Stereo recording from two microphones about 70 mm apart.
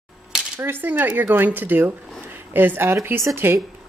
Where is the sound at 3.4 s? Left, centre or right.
Right.